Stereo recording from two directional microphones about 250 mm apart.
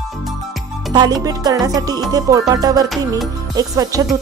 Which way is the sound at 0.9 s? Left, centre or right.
Centre.